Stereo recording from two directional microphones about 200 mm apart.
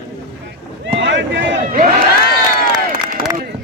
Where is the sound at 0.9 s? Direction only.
65° right (ahead or behind).